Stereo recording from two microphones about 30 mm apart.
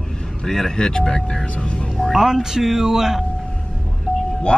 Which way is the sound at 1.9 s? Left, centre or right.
Centre.